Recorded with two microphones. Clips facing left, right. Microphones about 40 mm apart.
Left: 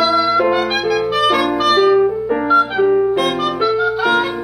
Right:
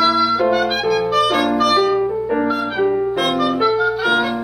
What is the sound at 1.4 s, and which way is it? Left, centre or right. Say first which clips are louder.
Clarinet: left 1 dB; left.